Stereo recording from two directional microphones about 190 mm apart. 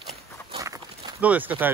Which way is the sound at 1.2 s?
10° right (ahead or behind).